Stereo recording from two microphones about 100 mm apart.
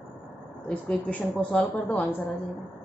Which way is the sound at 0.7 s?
15° left (ahead or behind).